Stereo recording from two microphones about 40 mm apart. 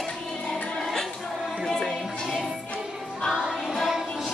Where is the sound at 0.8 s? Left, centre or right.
Centre.